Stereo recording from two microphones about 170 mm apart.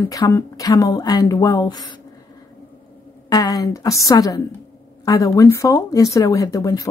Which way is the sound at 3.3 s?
20° left (ahead or behind).